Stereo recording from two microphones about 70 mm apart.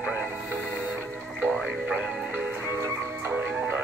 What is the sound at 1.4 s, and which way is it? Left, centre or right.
Music, right.